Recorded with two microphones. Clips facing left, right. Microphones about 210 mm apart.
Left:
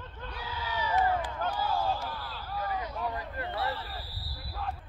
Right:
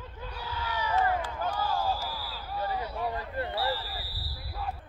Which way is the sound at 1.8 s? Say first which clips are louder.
Even; 5° right (ahead or behind).